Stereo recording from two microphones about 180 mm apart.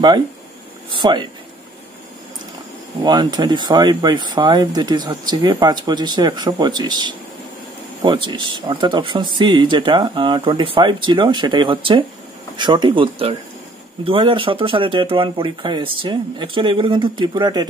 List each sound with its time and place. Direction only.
0.8 s speech: 25° right (ahead or behind)
3.0 s speech: 25° right (ahead or behind)